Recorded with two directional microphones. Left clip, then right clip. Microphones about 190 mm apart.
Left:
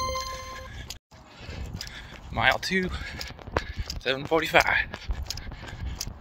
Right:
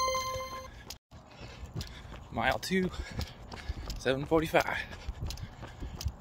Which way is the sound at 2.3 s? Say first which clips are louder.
Left 7 dB; 10° right (ahead or behind).